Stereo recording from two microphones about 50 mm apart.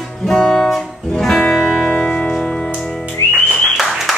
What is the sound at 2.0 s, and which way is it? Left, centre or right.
Music, left.